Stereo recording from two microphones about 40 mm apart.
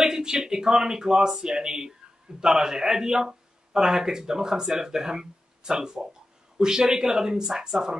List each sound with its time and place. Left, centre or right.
0.0 s a man's voice: centre